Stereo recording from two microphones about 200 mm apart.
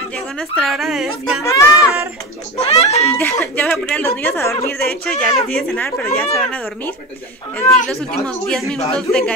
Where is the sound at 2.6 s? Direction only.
30° left (ahead or behind).